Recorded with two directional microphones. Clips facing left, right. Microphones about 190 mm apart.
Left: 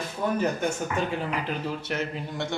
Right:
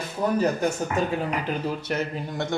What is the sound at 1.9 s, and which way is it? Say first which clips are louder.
Speech: right 3 dB; 45° right (ahead or behind).